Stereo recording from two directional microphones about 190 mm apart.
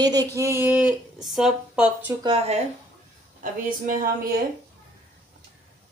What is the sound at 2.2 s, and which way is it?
Speech, 25° right (ahead or behind).